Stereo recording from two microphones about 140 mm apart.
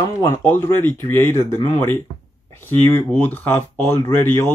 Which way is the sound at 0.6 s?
15° left (ahead or behind).